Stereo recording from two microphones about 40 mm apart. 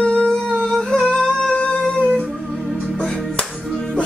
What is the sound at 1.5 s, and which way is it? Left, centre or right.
Music, left.